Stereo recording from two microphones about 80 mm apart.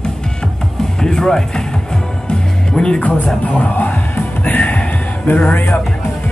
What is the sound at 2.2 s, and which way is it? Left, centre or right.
Music, centre.